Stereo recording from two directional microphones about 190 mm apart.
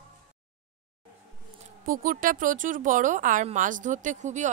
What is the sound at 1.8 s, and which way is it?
Speech, 45° right (ahead or behind).